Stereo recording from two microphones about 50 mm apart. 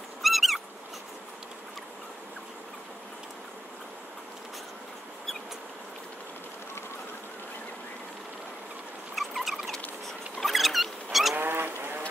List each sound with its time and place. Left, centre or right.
0.2 s squeak: centre
9.1 s a sound: centre
11.3 s goose: right